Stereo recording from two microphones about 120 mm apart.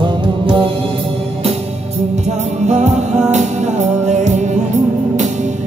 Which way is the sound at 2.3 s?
70° right (ahead or behind).